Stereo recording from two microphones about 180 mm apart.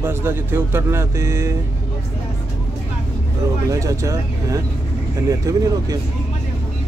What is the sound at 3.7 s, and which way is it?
Speech, 15° right (ahead or behind).